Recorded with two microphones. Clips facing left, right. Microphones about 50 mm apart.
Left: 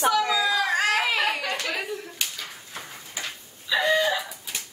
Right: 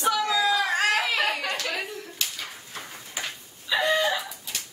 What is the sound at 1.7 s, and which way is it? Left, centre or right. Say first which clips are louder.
Clapping: left 2 dB; centre.